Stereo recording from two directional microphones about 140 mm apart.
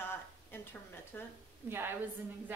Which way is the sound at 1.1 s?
15° left (ahead or behind).